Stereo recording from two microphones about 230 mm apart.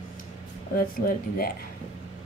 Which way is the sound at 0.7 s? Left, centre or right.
Left.